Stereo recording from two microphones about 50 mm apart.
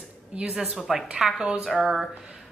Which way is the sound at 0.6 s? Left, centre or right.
Centre.